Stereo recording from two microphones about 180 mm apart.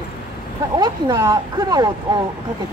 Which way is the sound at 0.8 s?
20° right (ahead or behind).